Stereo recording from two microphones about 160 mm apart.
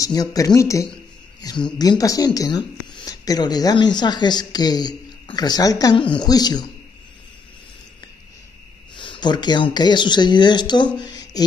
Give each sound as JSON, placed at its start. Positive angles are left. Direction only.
{"t": 0.0, "sound": "a woman's voice", "side_deg": 25}
{"t": 8.9, "sound": "a woman's voice", "side_deg": 30}
{"t": 11.0, "sound": "a sound", "side_deg": 25}